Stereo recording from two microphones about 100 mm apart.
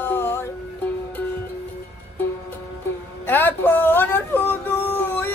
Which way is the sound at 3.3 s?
20° left (ahead or behind).